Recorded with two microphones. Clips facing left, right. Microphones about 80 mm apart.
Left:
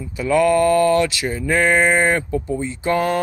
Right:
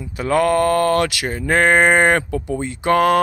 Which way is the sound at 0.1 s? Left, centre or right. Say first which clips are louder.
Left 1 dB; right.